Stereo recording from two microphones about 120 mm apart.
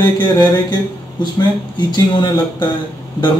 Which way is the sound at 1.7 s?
40° left (ahead or behind).